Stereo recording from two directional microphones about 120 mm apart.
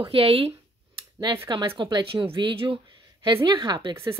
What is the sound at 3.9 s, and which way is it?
Speech, 25° right (ahead or behind).